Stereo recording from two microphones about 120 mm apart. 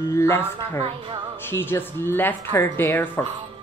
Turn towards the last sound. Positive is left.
turn(degrees=15)  # may be behind; listen again after turning